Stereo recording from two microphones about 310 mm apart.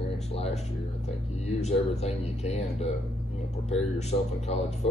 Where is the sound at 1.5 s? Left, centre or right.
Left.